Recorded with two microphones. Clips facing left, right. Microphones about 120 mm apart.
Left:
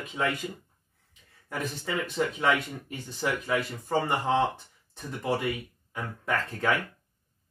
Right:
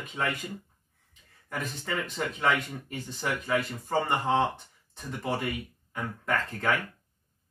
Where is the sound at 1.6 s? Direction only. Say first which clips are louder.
Left 2 dB; centre (ahead or behind).